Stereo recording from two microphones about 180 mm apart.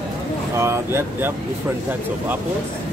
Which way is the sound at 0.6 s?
15° right (ahead or behind).